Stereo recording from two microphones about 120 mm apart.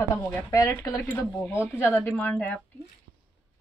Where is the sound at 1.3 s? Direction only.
15° left (ahead or behind).